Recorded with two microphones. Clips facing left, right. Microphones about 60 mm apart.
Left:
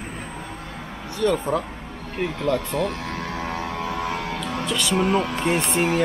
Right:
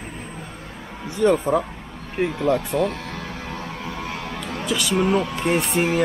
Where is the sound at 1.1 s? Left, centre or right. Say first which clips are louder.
Right 4 dB; centre.